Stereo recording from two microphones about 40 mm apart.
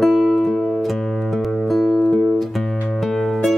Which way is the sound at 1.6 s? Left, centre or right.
Centre.